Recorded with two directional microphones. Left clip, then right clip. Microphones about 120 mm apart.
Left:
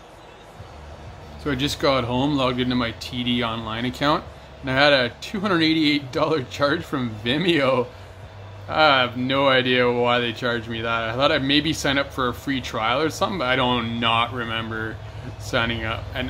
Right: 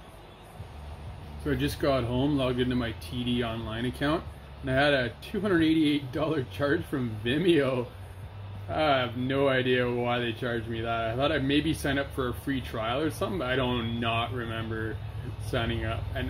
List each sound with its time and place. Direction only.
1.5 s speech: 25° left (ahead or behind)